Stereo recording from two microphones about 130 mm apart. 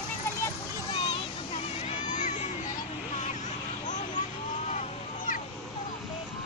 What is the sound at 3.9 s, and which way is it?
Vehicle, 70° left (ahead or behind).